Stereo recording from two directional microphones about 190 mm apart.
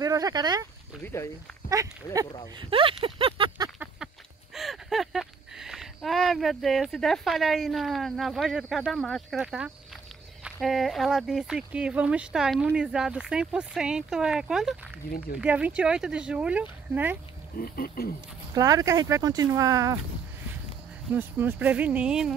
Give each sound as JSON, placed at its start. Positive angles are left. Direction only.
{"t": 0.0, "sound": "speech", "side_deg": -20}
{"t": 1.0, "sound": "speech", "side_deg": 15}
{"t": 1.8, "sound": "speech", "side_deg": -15}
{"t": 4.6, "sound": "speech", "side_deg": 0}
{"t": 17.6, "sound": "speech", "side_deg": 50}
{"t": 18.5, "sound": "speech", "side_deg": -20}
{"t": 21.1, "sound": "speech", "side_deg": -10}